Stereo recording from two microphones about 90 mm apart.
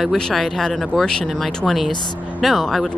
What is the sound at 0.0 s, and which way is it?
Speech, centre (ahead or behind).